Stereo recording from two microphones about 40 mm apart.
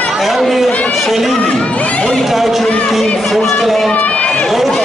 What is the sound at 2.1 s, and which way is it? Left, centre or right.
A man's voice, centre.